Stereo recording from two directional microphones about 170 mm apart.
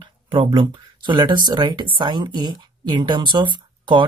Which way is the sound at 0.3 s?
30° right (ahead or behind).